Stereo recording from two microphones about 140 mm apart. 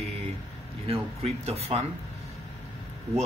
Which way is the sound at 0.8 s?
45° right (ahead or behind).